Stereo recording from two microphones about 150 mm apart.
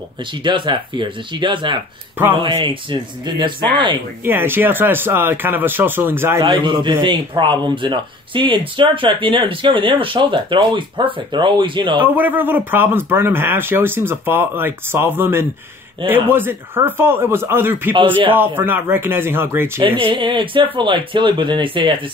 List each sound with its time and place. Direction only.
0.4 s a man's voice: 30° right (ahead or behind)
4.2 s speech: 15° right (ahead or behind)
6.4 s a man's voice: 30° right (ahead or behind)
12.0 s speech: 10° right (ahead or behind)
20.0 s a man's voice: 35° right (ahead or behind)